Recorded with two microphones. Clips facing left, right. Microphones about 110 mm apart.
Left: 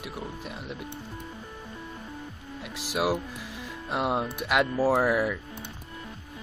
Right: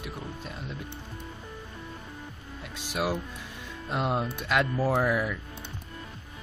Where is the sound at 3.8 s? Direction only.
10° left (ahead or behind).